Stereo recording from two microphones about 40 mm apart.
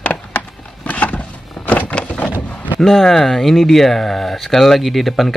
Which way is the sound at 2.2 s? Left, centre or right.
Left.